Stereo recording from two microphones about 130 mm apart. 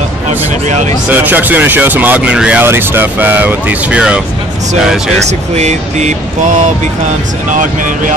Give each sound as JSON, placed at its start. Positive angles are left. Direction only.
{"t": 0.7, "sound": "speech", "side_deg": -65}
{"t": 1.0, "sound": "speech", "side_deg": -15}
{"t": 5.6, "sound": "speech", "side_deg": -60}